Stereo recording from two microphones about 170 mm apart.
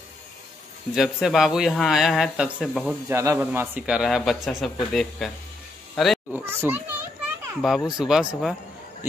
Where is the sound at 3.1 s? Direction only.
15° right (ahead or behind); by 5.3 s centre (ahead or behind).